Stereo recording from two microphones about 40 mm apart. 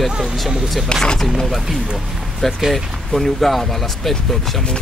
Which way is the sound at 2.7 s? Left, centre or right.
Centre.